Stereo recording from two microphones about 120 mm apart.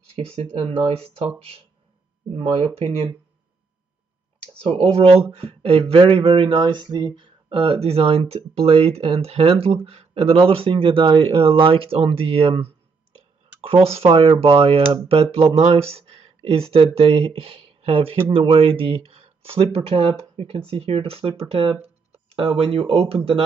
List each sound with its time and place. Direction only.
0.1 s speech: 50° right (ahead or behind)
2.3 s speech: 45° right (ahead or behind)
4.6 s speech: 55° right (ahead or behind)